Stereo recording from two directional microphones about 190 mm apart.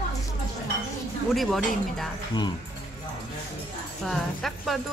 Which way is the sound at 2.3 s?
20° left (ahead or behind).